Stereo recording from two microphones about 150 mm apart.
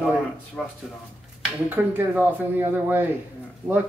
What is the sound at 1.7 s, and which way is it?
Speech, 10° right (ahead or behind).